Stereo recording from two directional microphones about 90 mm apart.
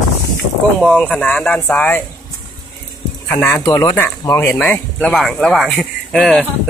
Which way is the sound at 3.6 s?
40° left (ahead or behind).